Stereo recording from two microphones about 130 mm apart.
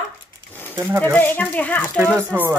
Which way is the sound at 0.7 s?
20° right (ahead or behind).